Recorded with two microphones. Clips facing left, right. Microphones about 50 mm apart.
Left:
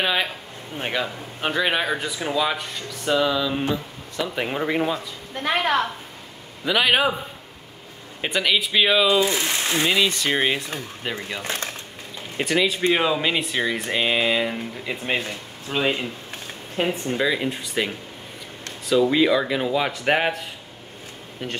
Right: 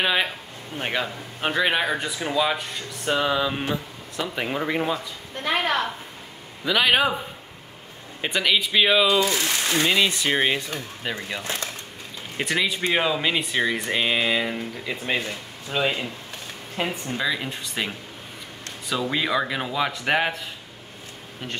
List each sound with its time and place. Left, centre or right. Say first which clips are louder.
0.0 s speech: even; centre
3.1 s a sound: left 2 dB; centre
4.4 s speech: left 2 dB; centre
6.6 s speech: left 1 dB; centre
8.2 s speech: even; centre
9.2 s speech: left 1 dB; left
9.8 s speech: left 1 dB; centre
12.4 s speech: left 4 dB; centre